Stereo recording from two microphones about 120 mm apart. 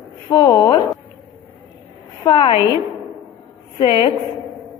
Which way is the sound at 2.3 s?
50° left (ahead or behind).